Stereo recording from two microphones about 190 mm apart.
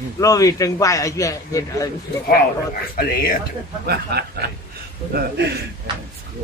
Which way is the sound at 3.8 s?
55° right (ahead or behind).